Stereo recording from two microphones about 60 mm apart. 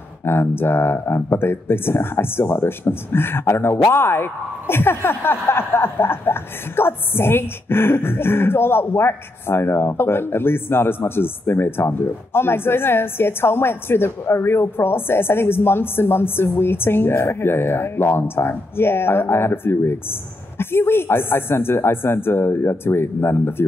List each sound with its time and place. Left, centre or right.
0.2 s speech: left